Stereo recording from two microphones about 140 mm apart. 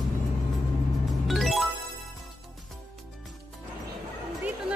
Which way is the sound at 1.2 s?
Centre (ahead or behind).